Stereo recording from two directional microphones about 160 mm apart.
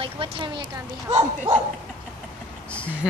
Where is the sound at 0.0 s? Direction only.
35° right (ahead or behind).